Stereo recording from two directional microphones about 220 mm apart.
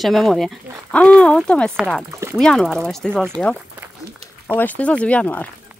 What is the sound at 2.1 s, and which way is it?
Speech, 15° right (ahead or behind).